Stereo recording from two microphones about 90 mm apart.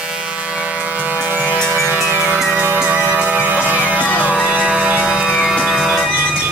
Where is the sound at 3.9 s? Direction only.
15° left (ahead or behind).